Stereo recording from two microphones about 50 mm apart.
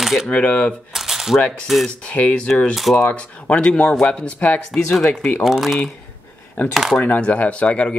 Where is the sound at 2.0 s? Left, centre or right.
Left.